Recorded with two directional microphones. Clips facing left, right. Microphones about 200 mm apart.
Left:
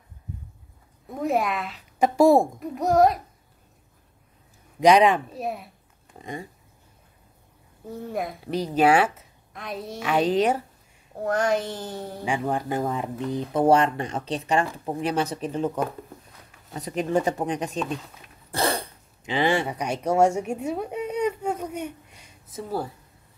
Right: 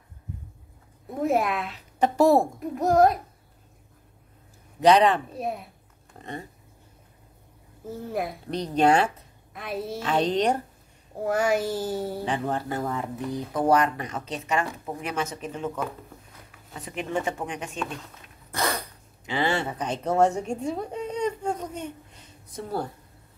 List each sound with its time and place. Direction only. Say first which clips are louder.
1.2 s a woman's voice: even; centre (ahead or behind)
2.0 s speech: left 2 dB; 10° left (ahead or behind)
2.6 s a woman's voice: even; centre (ahead or behind)
4.7 s speech: left 1 dB; 10° left (ahead or behind)
5.3 s a woman's voice: even; centre (ahead or behind)
6.1 s a sound: left 2 dB; 10° left (ahead or behind)
7.8 s speech: even; centre (ahead or behind)
9.5 s a woman's voice: right 2 dB; 5° right (ahead or behind)
10.0 s speech: left 2 dB; 10° left (ahead or behind)
11.2 s speech: even; 5° right (ahead or behind)
12.3 s speech: left 6 dB; 15° left (ahead or behind); by 17.7 s 35° left (ahead or behind)
18.5 s a sound: left 3 dB; 30° left (ahead or behind); by 22.8 s 5° left (ahead or behind)